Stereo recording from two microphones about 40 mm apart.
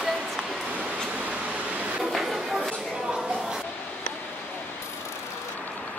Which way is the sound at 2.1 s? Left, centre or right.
Centre.